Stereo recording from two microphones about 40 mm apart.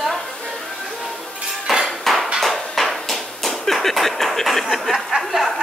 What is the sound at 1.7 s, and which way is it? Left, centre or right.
Dishes, centre.